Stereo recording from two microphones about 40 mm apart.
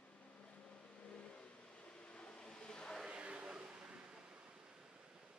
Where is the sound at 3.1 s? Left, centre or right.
Right.